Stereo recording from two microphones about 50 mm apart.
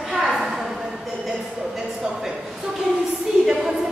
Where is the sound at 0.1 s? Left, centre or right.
Centre.